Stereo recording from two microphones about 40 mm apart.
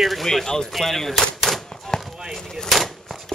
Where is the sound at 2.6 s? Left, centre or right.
Centre.